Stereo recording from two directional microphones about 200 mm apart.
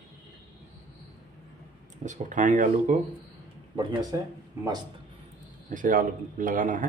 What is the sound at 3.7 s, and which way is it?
Speech, 20° right (ahead or behind).